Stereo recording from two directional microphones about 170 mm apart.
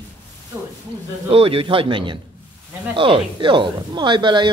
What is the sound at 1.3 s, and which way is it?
Speech, 30° right (ahead or behind).